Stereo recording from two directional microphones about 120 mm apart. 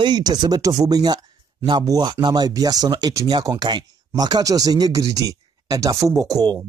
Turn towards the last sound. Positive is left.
turn(degrees=-30)  # may be behind; listen again after turning